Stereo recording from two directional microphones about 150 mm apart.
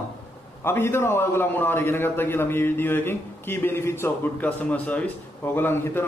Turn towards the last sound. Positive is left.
turn(degrees=15)  # may be behind; listen again after turning